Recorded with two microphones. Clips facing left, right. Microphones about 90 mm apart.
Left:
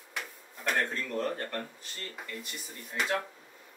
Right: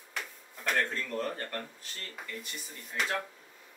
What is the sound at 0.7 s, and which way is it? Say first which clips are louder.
Speech: even; 5° left (ahead or behind).